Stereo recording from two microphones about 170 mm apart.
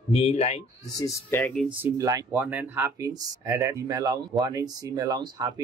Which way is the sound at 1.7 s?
10° right (ahead or behind).